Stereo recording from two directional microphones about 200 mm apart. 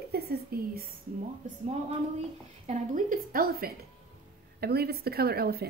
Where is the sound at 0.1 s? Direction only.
50° right (ahead or behind).